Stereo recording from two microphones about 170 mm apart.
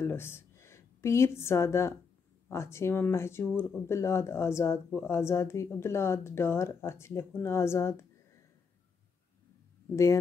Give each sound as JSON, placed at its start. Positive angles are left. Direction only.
{"t": 0.0, "sound": "a woman's voice", "side_deg": 15}